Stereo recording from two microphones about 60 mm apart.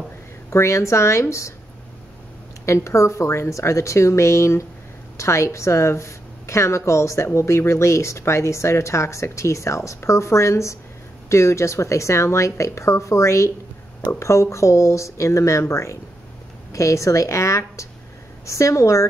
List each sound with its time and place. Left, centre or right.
0.5 s a woman's voice: left
2.6 s a woman's voice: left